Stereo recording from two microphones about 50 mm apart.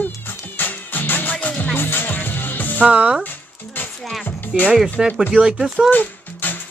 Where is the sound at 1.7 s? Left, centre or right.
Left.